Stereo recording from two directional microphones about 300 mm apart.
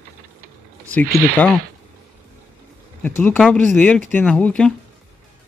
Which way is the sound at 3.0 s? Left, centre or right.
Centre.